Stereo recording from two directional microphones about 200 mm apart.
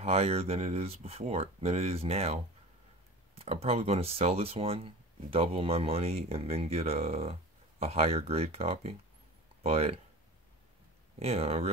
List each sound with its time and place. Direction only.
0.0 s speech: 30° right (ahead or behind)
11.1 s speech: 30° right (ahead or behind)